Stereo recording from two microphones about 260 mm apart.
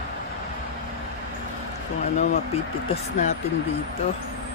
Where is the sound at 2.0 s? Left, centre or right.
Left.